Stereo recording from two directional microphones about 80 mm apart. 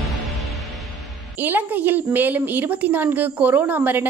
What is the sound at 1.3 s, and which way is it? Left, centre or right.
A woman's voice, right.